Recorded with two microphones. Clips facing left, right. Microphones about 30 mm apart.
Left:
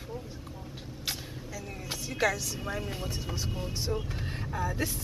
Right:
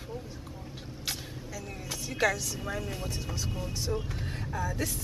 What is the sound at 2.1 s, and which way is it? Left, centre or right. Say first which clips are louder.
Speech: right 1 dB; centre.